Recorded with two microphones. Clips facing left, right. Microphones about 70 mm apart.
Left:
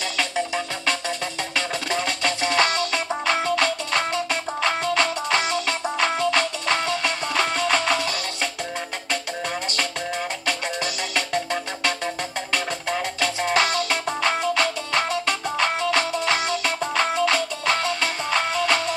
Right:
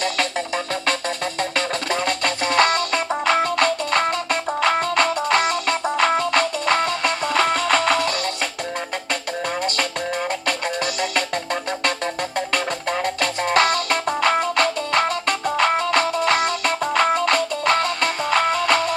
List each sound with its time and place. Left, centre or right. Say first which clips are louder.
1.9 s music: right 2 dB; centre
10.4 s music: right 3 dB; centre
13.0 s music: right 2 dB; centre